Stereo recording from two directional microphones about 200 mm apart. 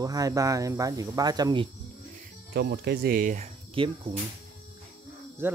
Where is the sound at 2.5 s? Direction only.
55° right (ahead or behind).